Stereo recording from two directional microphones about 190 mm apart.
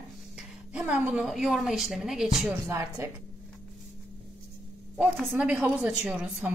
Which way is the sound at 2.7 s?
15° right (ahead or behind).